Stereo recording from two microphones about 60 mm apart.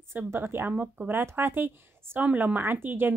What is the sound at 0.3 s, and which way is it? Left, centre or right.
Speech, right.